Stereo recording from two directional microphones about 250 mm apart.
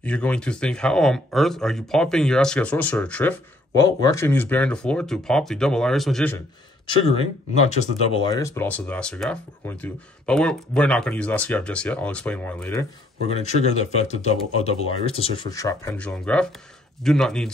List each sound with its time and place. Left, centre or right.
0.0 s speech: centre
6.9 s speech: left
13.3 s speech: left; by 17.5 s centre